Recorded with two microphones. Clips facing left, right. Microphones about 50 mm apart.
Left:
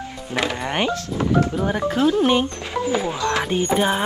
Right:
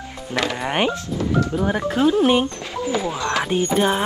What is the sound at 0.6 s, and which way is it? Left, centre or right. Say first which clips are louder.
Speech: right 1 dB; centre.